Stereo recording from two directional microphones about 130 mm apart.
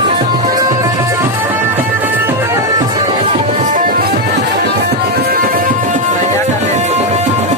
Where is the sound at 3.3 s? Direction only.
50° right (ahead or behind).